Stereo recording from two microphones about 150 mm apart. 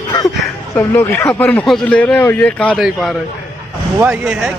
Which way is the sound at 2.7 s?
5° right (ahead or behind).